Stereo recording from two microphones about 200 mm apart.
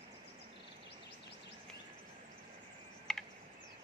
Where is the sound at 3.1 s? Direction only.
Centre (ahead or behind).